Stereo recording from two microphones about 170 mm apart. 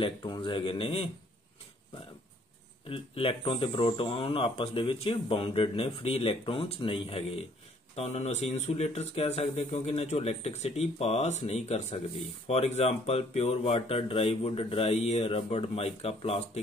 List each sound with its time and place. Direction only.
0.0 s speech: 30° left (ahead or behind)
2.9 s speech: 30° left (ahead or behind)